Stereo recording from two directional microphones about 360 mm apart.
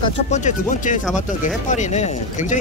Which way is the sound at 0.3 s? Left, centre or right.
Left.